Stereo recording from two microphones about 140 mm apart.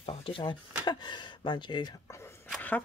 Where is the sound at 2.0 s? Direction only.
20° left (ahead or behind).